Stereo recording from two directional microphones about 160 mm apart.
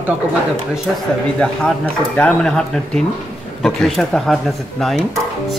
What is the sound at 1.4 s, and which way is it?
Speech, 5° left (ahead or behind).